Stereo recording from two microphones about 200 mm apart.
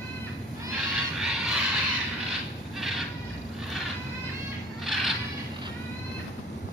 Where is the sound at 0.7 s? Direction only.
5° right (ahead or behind).